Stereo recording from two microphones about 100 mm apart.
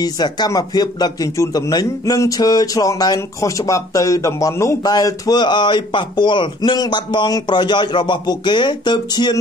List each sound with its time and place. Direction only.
0.0 s a man's voice: 40° left (ahead or behind)